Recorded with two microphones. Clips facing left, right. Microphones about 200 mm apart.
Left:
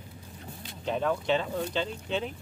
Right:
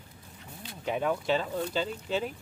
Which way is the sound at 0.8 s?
10° right (ahead or behind).